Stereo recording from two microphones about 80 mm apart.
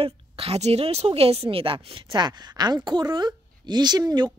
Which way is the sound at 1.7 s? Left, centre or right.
Right.